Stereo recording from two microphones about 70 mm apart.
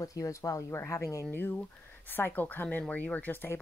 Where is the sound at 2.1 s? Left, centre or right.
Left.